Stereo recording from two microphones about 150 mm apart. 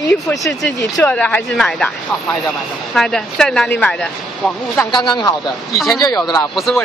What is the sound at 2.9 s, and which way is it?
Speech, centre (ahead or behind).